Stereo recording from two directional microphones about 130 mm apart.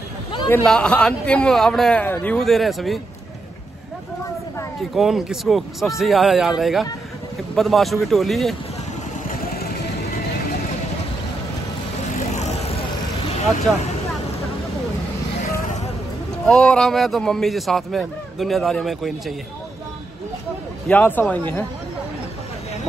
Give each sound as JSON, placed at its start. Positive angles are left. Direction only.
{"t": 0.7, "sound": "a man's voice", "side_deg": 10}
{"t": 4.9, "sound": "a man's voice", "side_deg": 0}
{"t": 12.4, "sound": "vehicle", "side_deg": 60}
{"t": 13.7, "sound": "a man's voice", "side_deg": 5}
{"t": 16.4, "sound": "a man's voice", "side_deg": 5}
{"t": 20.9, "sound": "a man's voice", "side_deg": 15}